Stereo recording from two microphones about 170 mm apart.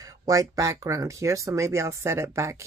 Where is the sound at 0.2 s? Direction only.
20° right (ahead or behind).